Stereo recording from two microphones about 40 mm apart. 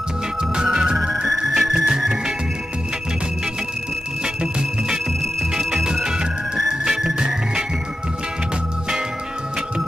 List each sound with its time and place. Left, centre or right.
0.6 s music: centre
0.9 s music: centre
4.4 s music: centre
5.6 s music: centre
6.0 s music: centre